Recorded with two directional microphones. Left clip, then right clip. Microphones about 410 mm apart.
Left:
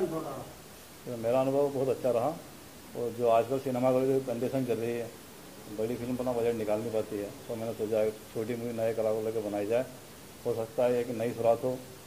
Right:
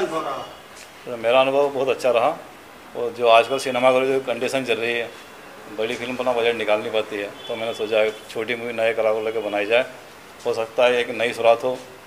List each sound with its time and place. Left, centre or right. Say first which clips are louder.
0.0 s a man's voice: right 9 dB; centre
1.5 s speech: right 9 dB; centre